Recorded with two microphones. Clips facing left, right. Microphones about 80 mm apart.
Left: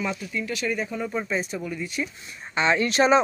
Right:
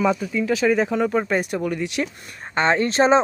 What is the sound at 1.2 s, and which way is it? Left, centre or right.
Speech, right.